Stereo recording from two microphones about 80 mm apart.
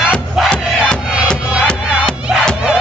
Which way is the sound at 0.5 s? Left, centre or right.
Centre.